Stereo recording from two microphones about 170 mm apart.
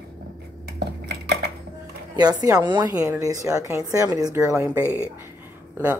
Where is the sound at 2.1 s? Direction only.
20° right (ahead or behind).